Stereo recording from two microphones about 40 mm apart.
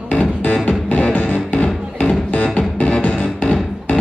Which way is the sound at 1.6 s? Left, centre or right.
Left.